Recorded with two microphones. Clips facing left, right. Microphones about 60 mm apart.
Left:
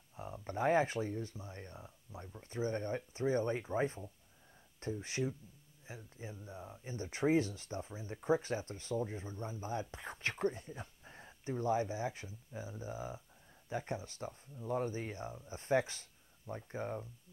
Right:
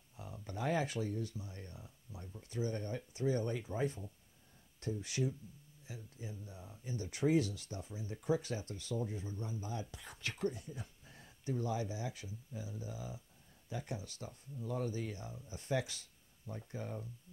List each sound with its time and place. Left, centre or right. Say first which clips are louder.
0.1 s speech: left 5 dB; left